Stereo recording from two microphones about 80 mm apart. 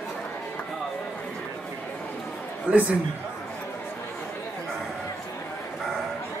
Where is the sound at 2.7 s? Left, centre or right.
Centre.